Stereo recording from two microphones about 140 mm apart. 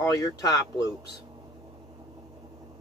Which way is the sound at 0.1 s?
25° left (ahead or behind).